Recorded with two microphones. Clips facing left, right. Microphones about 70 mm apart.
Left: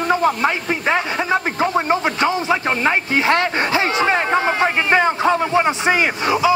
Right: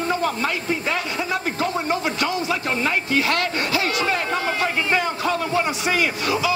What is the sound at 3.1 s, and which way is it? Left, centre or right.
Speech, left.